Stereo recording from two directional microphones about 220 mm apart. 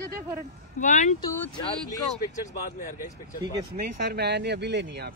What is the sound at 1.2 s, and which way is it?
Speech, 15° left (ahead or behind).